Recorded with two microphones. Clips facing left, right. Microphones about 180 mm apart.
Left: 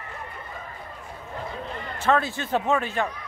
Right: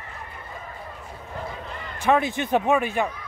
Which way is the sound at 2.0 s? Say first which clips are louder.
Right 2 dB; 15° right (ahead or behind).